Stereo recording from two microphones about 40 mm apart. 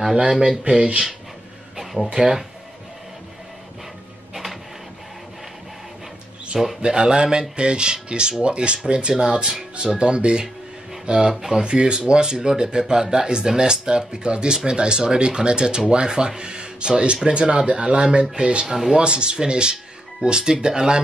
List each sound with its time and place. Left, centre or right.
0.7 s speech: right
2.2 s speech: right
4.3 s printer: centre
6.5 s speech: centre
6.9 s speech: right
11.3 s speech: centre
11.6 s speech: right
18.7 s speech: centre
18.9 s speech: right